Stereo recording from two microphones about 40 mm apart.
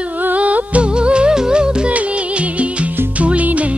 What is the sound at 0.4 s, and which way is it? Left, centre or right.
Music, right.